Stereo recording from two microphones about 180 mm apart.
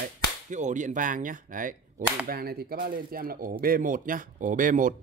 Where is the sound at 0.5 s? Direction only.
45° right (ahead or behind).